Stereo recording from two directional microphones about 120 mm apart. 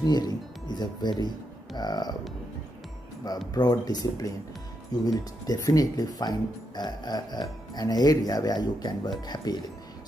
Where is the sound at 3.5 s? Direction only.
35° left (ahead or behind).